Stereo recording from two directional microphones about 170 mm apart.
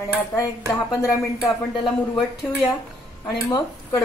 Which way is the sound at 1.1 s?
20° left (ahead or behind).